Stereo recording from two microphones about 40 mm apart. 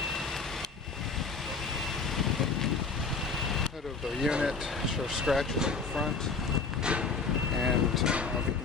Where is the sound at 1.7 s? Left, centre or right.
Centre.